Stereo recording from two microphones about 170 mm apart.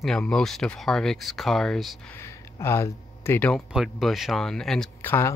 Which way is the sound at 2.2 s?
15° left (ahead or behind).